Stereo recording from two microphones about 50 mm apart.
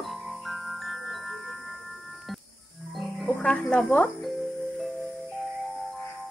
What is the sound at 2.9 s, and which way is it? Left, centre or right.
Music, centre.